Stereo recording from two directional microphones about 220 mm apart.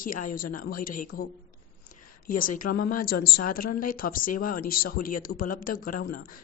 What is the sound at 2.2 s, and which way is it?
Speech, 40° left (ahead or behind).